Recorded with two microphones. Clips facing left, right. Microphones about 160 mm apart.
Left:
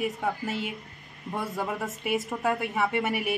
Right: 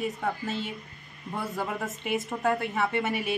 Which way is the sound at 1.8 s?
Centre (ahead or behind).